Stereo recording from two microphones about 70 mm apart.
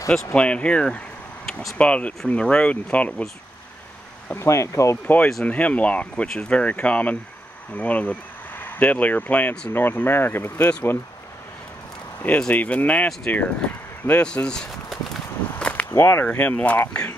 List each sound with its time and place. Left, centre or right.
0.1 s speech: centre
4.4 s speech: left
5.0 s speech: left
6.2 s speech: centre
6.6 s speech: centre
12.2 s speech: left
15.6 s whip: centre
15.9 s speech: left
16.3 s speech: centre